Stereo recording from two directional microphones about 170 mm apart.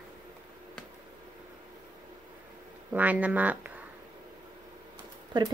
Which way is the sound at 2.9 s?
10° right (ahead or behind).